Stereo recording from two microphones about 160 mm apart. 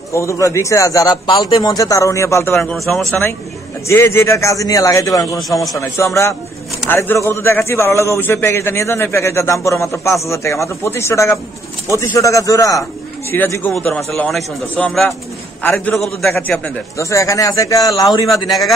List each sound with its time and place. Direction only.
0.1 s a man's voice: 20° left (ahead or behind)
2.5 s a man's voice: 5° left (ahead or behind)
3.8 s a man's voice: 15° left (ahead or behind)
18.3 s a man's voice: centre (ahead or behind)